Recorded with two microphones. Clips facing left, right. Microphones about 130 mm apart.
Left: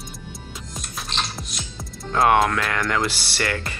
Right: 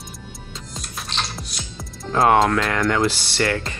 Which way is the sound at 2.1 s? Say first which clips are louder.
Right 2 dB; 25° right (ahead or behind).